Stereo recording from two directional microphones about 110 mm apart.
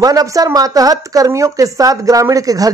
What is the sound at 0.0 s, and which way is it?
Speech, 35° right (ahead or behind).